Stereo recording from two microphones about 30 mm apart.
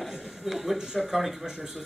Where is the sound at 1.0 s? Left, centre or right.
Centre.